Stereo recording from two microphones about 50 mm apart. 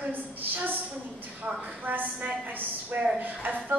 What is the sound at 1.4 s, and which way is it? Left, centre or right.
Speech, right.